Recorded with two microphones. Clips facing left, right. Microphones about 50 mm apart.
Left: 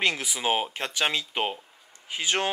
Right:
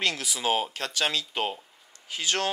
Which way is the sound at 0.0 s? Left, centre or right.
Left.